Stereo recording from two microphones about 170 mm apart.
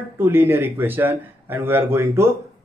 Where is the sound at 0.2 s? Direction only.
15° right (ahead or behind).